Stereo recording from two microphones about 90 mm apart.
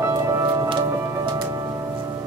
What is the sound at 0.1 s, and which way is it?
Music, 40° right (ahead or behind).